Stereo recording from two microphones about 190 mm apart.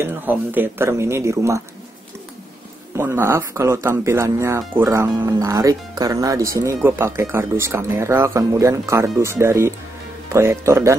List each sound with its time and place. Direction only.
0.0 s speech: 10° right (ahead or behind)
3.0 s speech: 15° right (ahead or behind)